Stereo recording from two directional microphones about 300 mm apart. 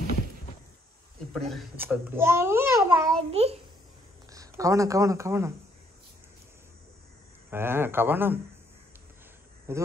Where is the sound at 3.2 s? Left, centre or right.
Centre.